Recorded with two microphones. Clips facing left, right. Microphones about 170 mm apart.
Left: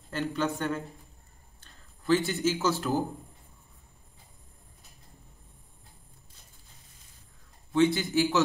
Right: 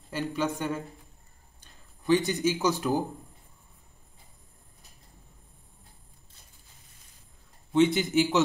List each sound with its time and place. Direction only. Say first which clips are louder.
0.1 s speech: even; 10° right (ahead or behind)
7.7 s a man's voice: right 2 dB; 20° right (ahead or behind)